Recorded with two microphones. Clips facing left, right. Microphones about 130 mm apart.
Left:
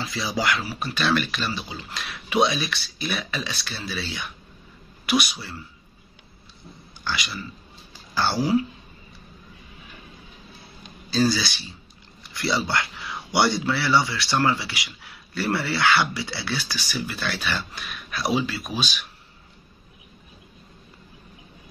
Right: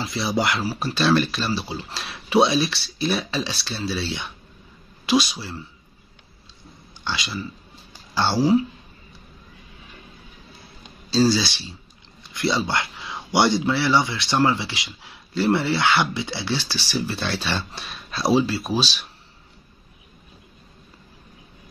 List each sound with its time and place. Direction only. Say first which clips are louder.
0.0 s speech: right 3 dB; 25° right (ahead or behind)
7.1 s speech: right 2 dB; 25° right (ahead or behind)
11.1 s speech: right 3 dB; 25° right (ahead or behind)